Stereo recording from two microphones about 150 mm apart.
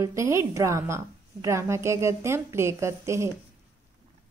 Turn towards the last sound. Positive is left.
turn(degrees=-20)  # may be behind; listen again after turning